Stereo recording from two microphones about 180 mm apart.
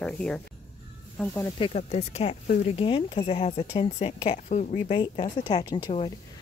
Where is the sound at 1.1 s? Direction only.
15° left (ahead or behind).